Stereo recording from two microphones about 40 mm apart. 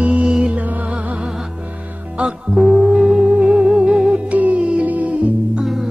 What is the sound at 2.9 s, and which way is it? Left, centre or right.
Music, right.